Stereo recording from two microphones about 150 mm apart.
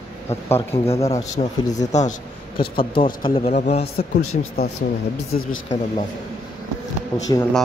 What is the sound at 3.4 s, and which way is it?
Speech, 50° left (ahead or behind).